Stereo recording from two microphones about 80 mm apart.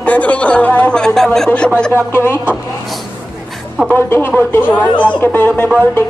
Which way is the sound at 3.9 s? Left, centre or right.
Left.